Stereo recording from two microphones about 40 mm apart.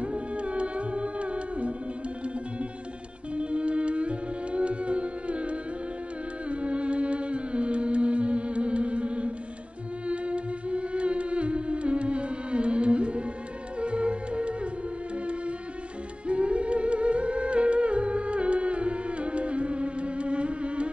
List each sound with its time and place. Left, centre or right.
0.0 s music: right
3.3 s music: right
16.3 s music: right